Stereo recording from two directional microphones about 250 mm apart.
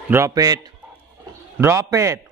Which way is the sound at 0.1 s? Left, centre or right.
Centre.